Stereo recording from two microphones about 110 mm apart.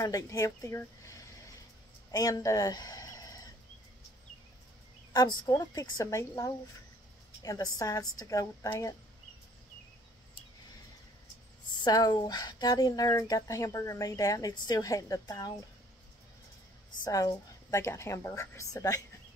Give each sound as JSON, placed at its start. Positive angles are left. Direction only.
{"t": 0.0, "sound": "a woman's voice", "side_deg": 30}
{"t": 5.1, "sound": "a woman's voice", "side_deg": 40}
{"t": 11.8, "sound": "speech", "side_deg": 40}
{"t": 17.0, "sound": "a woman's voice", "side_deg": 35}